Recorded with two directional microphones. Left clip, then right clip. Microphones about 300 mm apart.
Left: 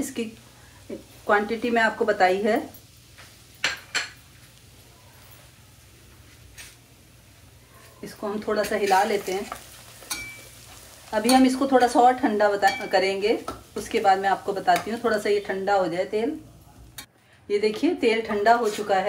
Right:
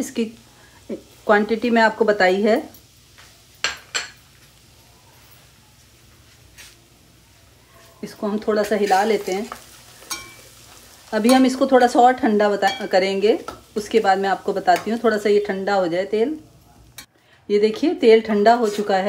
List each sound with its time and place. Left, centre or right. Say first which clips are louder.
0.2 s speech: right 6 dB; right
8.0 s speech: right 5 dB; right
11.1 s speech: right 3 dB; right
17.7 s speech: right 8 dB; right